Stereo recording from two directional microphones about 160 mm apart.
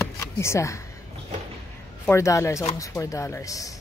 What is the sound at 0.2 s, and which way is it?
Speech, 20° left (ahead or behind).